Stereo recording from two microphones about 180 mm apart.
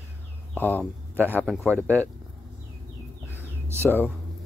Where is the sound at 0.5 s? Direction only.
10° left (ahead or behind).